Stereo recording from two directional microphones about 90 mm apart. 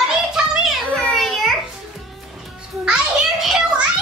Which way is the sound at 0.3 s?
5° right (ahead or behind).